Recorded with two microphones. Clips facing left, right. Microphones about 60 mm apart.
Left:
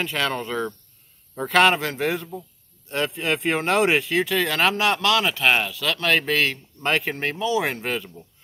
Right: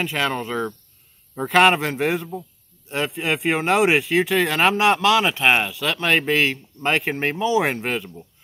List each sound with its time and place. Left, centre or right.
0.0 s a man's voice: centre
1.6 s speech: centre